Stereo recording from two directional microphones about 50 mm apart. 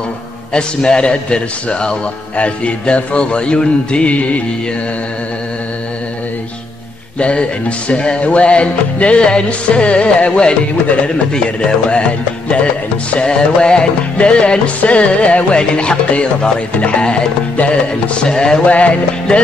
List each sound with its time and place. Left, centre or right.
0.5 s music: centre
7.2 s music: left
18.7 s music: left